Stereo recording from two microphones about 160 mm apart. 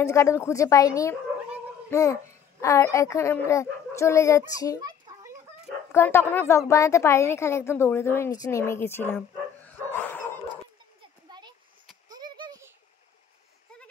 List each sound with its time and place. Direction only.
0.0 s a child's voice: 20° left (ahead or behind)
4.8 s a sound: 25° right (ahead or behind)
5.9 s a woman's voice: 15° left (ahead or behind)
9.7 s dog: 10° left (ahead or behind)
11.0 s splash: 25° right (ahead or behind)
12.1 s a sound: 25° right (ahead or behind)